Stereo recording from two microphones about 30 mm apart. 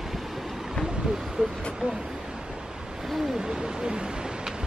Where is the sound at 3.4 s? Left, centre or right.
Right.